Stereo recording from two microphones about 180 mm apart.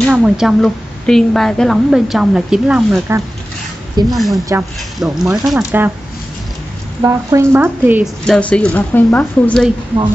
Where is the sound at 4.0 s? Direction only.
20° right (ahead or behind).